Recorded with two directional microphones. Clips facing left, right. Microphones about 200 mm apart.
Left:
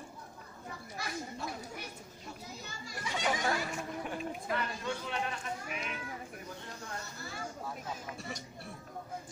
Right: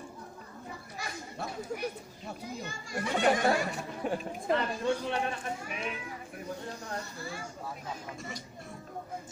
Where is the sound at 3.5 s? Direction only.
35° right (ahead or behind).